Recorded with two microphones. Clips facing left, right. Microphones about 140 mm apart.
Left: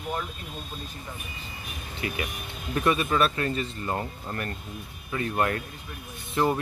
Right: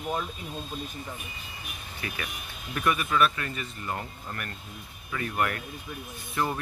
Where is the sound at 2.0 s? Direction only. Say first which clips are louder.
Left 5 dB; 25° left (ahead or behind).